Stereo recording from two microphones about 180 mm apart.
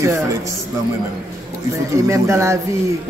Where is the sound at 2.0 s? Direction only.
15° right (ahead or behind).